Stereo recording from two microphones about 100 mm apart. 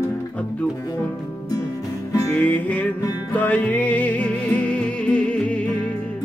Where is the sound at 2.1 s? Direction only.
35° left (ahead or behind).